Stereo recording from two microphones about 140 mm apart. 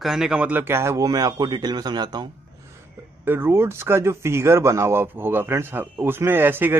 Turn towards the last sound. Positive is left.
turn(degrees=-15)  # may be behind; listen again after turning